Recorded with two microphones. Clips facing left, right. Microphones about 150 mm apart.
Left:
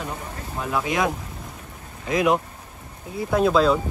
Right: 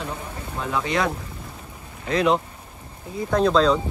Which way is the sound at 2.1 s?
10° left (ahead or behind).